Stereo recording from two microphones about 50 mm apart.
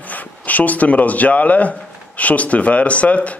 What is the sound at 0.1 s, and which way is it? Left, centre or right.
Speech, left.